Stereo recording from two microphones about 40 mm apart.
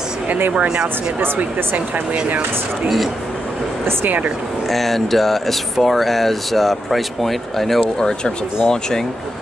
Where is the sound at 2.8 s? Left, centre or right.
Centre.